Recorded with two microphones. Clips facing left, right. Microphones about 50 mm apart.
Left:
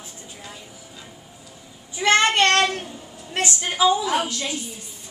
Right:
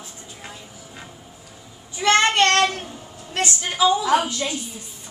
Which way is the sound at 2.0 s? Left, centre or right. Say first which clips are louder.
Right 1 dB; centre.